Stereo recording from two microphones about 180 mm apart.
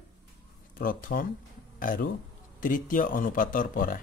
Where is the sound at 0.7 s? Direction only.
50° left (ahead or behind).